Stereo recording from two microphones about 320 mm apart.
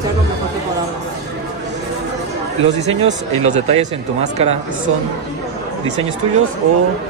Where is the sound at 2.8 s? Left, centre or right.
Centre.